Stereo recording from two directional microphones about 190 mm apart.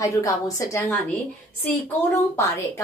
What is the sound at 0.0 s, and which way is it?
Speech, 15° left (ahead or behind).